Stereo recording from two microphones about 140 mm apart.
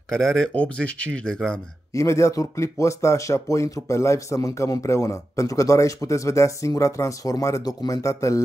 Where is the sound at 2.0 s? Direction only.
20° left (ahead or behind).